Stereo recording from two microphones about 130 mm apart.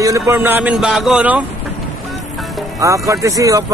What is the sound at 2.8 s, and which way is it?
Speech, 25° right (ahead or behind).